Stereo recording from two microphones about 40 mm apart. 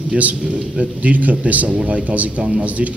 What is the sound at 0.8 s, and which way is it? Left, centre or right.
A man's voice, right.